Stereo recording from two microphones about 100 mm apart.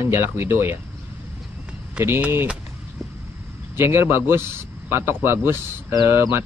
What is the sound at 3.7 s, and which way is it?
A man's voice, 25° right (ahead or behind).